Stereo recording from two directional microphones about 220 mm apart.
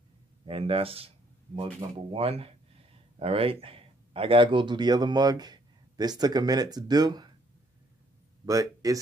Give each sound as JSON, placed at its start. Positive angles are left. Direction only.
{"t": 0.5, "sound": "speech", "side_deg": -25}
{"t": 8.5, "sound": "speech", "side_deg": -15}